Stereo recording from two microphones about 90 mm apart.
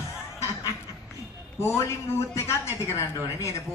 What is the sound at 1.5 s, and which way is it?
A man's voice, 35° left (ahead or behind).